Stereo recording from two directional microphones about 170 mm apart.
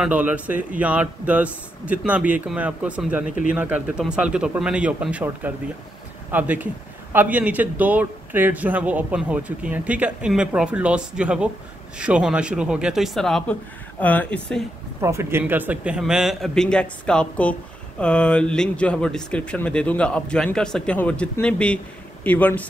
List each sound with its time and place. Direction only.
0.0 s a man's voice: 10° right (ahead or behind); by 14.6 s 10° left (ahead or behind)
15.0 s a man's voice: 15° right (ahead or behind); by 22.7 s 10° left (ahead or behind)